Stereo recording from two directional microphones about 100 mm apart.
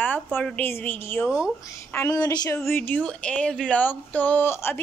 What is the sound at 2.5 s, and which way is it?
A woman's voice, 20° left (ahead or behind).